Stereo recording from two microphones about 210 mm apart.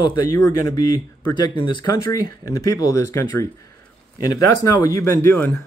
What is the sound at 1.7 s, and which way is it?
A man's voice, 20° left (ahead or behind).